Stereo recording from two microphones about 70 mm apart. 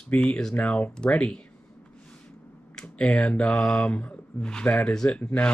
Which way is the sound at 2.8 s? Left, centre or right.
Centre.